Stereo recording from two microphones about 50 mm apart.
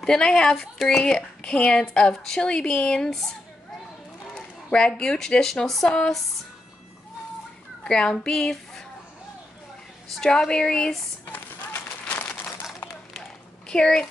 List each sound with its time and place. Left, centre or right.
0.0 s a woman's voice: centre
4.4 s a woman's voice: centre
7.8 s a woman's voice: centre
10.3 s a woman's voice: centre
11.2 s crumpling: left
13.7 s a child's voice: centre